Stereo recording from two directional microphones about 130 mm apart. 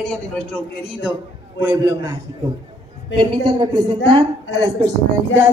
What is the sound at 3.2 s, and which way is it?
A woman's voice, 35° right (ahead or behind).